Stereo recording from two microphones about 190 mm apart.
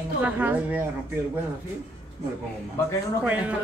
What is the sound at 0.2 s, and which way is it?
Speech, 10° right (ahead or behind).